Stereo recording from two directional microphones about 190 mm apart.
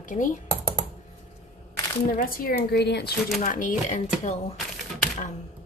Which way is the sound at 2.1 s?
50° left (ahead or behind).